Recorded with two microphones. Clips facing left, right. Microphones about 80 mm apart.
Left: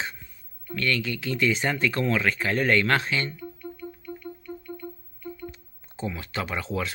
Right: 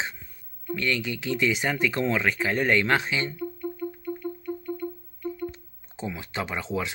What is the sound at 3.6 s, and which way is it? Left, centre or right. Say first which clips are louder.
Music: right 6 dB; right.